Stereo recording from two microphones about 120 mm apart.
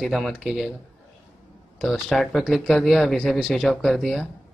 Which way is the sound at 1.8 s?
5° left (ahead or behind).